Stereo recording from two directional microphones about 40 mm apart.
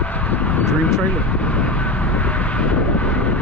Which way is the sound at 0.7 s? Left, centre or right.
Left.